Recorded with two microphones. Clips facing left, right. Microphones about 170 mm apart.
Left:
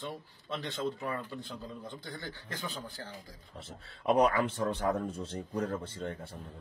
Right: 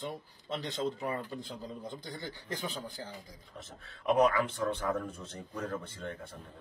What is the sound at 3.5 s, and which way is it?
A man's voice, 30° left (ahead or behind).